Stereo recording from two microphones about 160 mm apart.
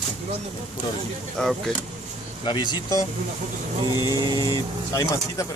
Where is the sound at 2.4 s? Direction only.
30° left (ahead or behind).